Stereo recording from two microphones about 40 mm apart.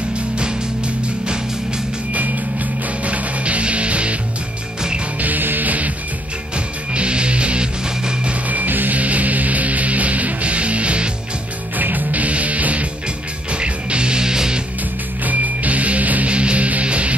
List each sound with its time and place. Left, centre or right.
3.0 s music: right
5.2 s music: right
6.5 s music: right
8.5 s music: right
11.7 s music: right; by 14.6 s centre
15.2 s music: right
16.3 s music: right